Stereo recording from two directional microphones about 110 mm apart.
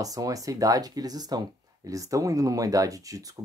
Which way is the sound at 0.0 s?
35° right (ahead or behind).